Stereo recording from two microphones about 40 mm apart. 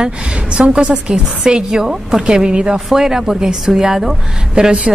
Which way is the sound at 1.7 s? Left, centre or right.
Centre.